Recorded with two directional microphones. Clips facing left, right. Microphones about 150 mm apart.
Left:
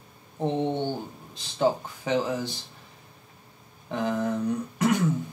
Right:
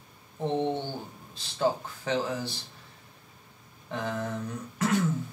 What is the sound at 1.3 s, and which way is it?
Speech, 15° left (ahead or behind).